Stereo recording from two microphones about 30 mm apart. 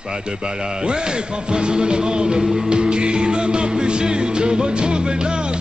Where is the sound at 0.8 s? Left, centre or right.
Right.